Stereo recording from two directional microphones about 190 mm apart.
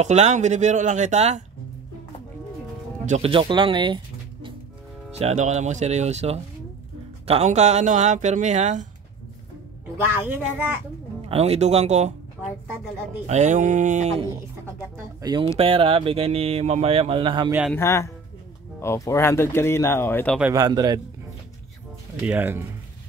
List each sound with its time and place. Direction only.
0.0 s speech: 35° right (ahead or behind)
3.1 s speech: 30° right (ahead or behind)
5.2 s speech: 40° right (ahead or behind)
10.2 s a child's voice: 10° right (ahead or behind)
11.2 s speech: 35° right (ahead or behind)
13.3 s speech: 40° right (ahead or behind)
15.2 s speech: 25° right (ahead or behind)
17.7 s speech: 15° left (ahead or behind)
20.5 s speech: 20° right (ahead or behind)
22.2 s a child's voice: 10° right (ahead or behind)